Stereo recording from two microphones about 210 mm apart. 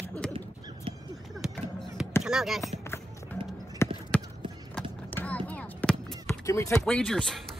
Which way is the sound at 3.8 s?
10° left (ahead or behind).